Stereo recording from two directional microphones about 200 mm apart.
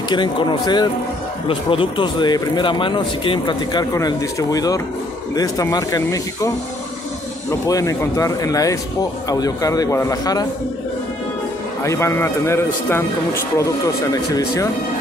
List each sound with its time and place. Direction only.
0.1 s a man's voice: 25° left (ahead or behind)
7.6 s a man's voice: 15° left (ahead or behind)
11.8 s a man's voice: 15° left (ahead or behind)